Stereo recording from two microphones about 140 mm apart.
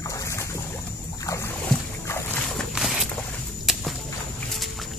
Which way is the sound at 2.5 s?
Centre (ahead or behind).